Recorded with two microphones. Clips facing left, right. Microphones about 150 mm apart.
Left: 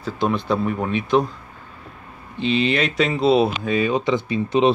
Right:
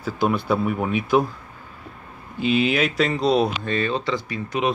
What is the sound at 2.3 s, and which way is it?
Speech, 5° right (ahead or behind).